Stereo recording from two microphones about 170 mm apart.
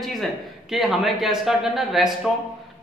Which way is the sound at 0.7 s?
Centre (ahead or behind).